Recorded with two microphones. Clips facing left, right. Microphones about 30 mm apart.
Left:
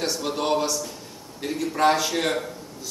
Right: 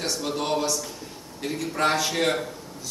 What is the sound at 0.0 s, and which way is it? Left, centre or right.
A man's voice, centre.